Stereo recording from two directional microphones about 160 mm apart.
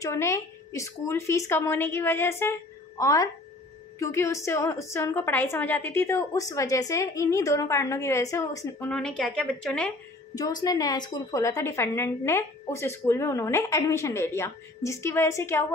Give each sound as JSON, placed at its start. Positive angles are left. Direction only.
{"t": 0.0, "sound": "a woman's voice", "side_deg": 20}
{"t": 8.9, "sound": "a woman's voice", "side_deg": 5}
{"t": 10.3, "sound": "a woman's voice", "side_deg": 25}